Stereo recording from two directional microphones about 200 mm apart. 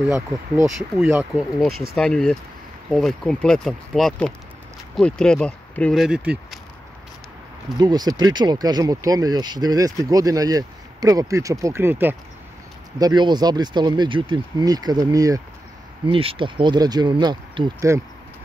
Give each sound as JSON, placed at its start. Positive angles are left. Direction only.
{"t": 0.7, "sound": "speech", "side_deg": -5}
{"t": 7.8, "sound": "speech", "side_deg": -20}
{"t": 13.0, "sound": "speech", "side_deg": -20}